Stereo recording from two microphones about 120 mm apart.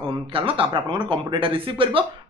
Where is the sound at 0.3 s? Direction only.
50° right (ahead or behind).